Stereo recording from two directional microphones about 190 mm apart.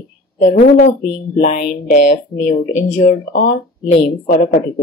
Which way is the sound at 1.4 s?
45° left (ahead or behind).